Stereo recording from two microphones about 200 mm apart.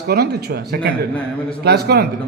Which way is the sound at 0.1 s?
50° right (ahead or behind).